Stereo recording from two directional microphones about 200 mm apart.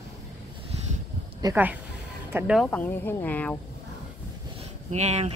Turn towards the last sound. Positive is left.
turn(degrees=-35)  # may be behind; listen again after turning